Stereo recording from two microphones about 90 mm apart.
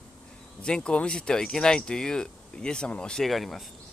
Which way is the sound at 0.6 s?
10° left (ahead or behind).